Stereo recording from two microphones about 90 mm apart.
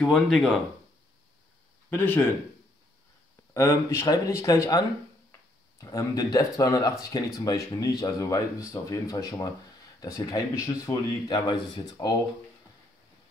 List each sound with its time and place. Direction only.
0.0 s speech: 5° left (ahead or behind)
1.9 s speech: 20° left (ahead or behind)
3.5 s speech: 30° left (ahead or behind)
11.2 s speech: 55° left (ahead or behind)